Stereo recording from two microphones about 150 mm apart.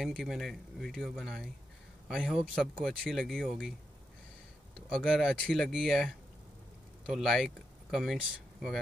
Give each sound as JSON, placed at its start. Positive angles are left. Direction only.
{"t": 0.0, "sound": "speech", "side_deg": 0}
{"t": 4.7, "sound": "speech", "side_deg": 5}